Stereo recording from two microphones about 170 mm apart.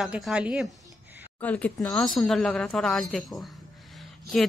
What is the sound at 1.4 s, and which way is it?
A woman's voice, 10° left (ahead or behind).